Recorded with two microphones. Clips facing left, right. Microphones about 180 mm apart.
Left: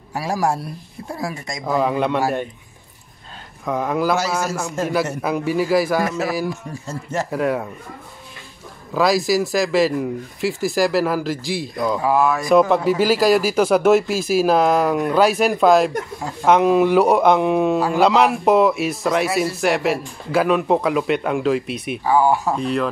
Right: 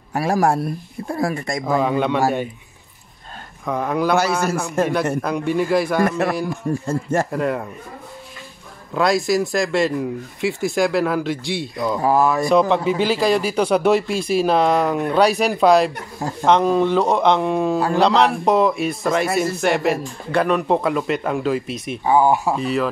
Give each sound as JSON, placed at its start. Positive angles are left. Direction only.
{"t": 0.1, "sound": "speech", "side_deg": -55}
{"t": 1.7, "sound": "a man's voice", "side_deg": 0}
{"t": 3.6, "sound": "a man's voice", "side_deg": 0}
{"t": 4.8, "sound": "speech", "side_deg": -55}
{"t": 5.2, "sound": "a man's voice", "side_deg": 5}
{"t": 6.0, "sound": "speech", "side_deg": -55}
{"t": 7.2, "sound": "a man's voice", "side_deg": 0}
{"t": 8.9, "sound": "a man's voice", "side_deg": 0}
{"t": 12.0, "sound": "speech", "side_deg": -40}
{"t": 12.4, "sound": "a man's voice", "side_deg": 0}
{"t": 22.0, "sound": "speech", "side_deg": -20}
{"t": 22.6, "sound": "a man's voice", "side_deg": -5}